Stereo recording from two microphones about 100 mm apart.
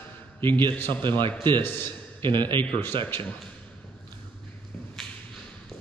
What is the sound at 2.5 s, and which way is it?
Speech, 55° right (ahead or behind).